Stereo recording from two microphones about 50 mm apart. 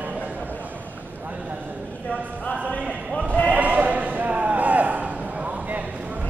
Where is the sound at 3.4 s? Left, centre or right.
Right.